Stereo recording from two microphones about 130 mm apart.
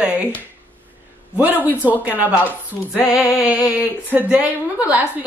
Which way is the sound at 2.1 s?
10° right (ahead or behind).